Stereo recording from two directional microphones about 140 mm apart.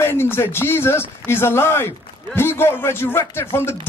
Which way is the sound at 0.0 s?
15° left (ahead or behind).